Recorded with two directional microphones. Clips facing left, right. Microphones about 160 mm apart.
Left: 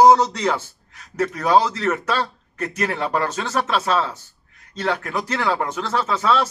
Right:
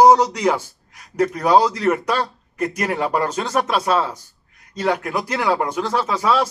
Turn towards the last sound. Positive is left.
turn(degrees=-10)  # may be behind; listen again after turning